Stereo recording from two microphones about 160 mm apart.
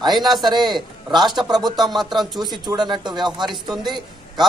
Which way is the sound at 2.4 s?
25° right (ahead or behind).